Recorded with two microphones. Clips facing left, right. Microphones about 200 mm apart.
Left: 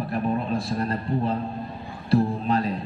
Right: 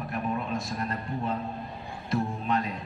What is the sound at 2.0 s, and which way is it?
Music, 35° left (ahead or behind).